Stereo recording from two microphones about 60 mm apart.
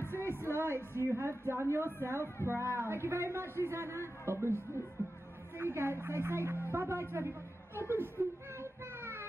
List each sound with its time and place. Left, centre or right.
0.2 s music: right
0.6 s a man's voice: right
8.5 s a sound: right